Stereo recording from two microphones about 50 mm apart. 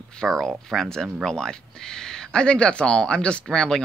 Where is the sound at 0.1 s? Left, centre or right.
Centre.